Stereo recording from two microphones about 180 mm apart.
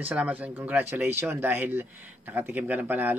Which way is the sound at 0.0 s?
5° right (ahead or behind).